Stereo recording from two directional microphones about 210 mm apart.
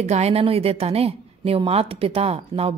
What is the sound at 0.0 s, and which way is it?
A woman's voice, 30° right (ahead or behind).